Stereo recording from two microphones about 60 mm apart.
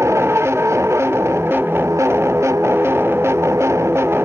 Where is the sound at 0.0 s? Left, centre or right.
Right.